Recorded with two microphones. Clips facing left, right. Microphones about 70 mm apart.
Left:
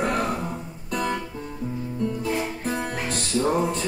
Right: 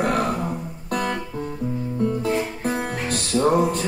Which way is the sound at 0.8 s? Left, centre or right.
Right.